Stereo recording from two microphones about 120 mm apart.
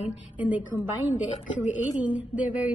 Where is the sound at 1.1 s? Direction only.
80° left.